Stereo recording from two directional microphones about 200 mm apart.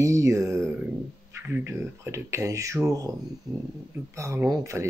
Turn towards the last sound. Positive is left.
turn(degrees=-15)  # may be behind; listen again after turning